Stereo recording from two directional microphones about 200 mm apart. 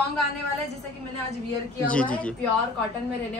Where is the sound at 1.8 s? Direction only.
5° left (ahead or behind).